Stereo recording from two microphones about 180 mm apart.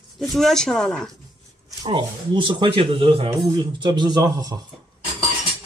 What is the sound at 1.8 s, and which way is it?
Speech, 30° right (ahead or behind).